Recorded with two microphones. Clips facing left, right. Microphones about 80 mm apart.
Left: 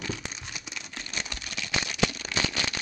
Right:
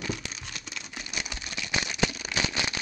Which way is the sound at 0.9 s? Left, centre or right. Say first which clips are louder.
Even; centre.